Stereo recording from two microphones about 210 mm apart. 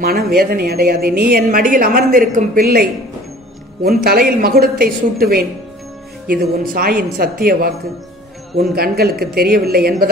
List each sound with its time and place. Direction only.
0.4 s a woman's voice: 45° right (ahead or behind)
8.7 s a woman's voice: 45° right (ahead or behind)